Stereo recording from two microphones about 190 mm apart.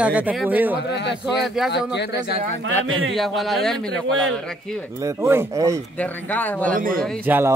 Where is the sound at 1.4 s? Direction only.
Centre (ahead or behind).